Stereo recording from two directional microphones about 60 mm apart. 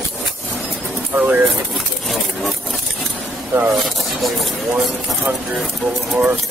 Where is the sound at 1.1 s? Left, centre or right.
Right.